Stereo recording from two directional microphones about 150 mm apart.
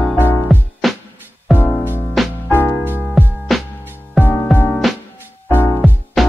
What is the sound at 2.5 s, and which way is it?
Music, 15° left (ahead or behind).